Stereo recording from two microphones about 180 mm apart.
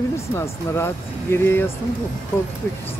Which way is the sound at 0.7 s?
15° left (ahead or behind).